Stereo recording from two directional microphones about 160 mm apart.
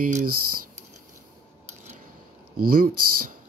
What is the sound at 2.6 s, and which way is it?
Speech, 65° right (ahead or behind).